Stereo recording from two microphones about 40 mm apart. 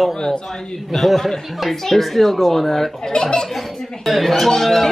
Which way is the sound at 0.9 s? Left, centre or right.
Centre.